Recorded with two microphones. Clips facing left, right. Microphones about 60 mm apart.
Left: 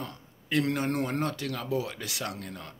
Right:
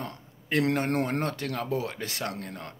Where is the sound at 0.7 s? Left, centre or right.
Right.